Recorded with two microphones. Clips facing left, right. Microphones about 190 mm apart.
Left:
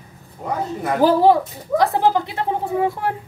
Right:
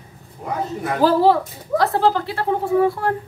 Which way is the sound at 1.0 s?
15° left (ahead or behind).